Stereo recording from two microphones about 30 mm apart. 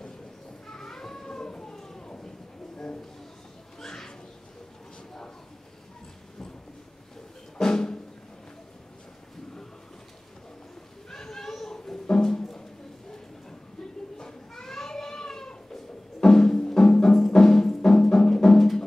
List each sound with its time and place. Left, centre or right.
0.7 s a sound: centre
1.4 s baby cry: left
3.8 s bird: centre
7.5 s music: centre
11.1 s music: centre
14.1 s a sound: centre
16.5 s music: centre